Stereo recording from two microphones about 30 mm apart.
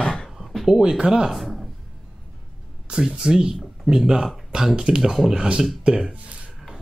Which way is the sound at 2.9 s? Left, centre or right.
Right.